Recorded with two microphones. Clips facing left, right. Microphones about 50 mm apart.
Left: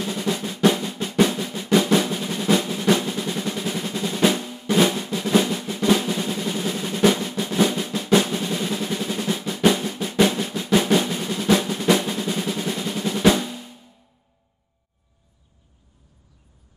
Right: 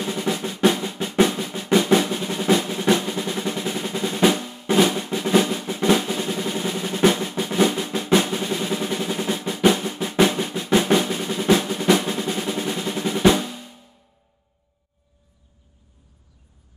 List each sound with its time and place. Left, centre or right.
0.0 s drum roll: centre
0.7 s drum: centre
1.2 s drum roll: centre
4.7 s drum roll: centre
5.0 s drum: centre
5.3 s drum roll: centre
8.0 s drum roll: right
8.3 s drum roll: centre
13.2 s drum: centre